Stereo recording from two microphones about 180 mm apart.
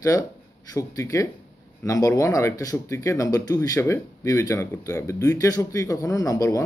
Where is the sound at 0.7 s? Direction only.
15° left (ahead or behind).